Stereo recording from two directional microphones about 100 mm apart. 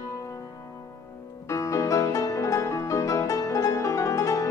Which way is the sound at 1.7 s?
35° left (ahead or behind).